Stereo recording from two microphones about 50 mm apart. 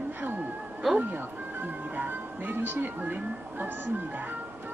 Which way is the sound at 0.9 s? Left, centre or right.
Right.